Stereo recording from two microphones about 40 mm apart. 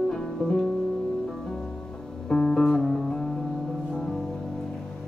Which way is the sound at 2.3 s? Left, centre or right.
Centre.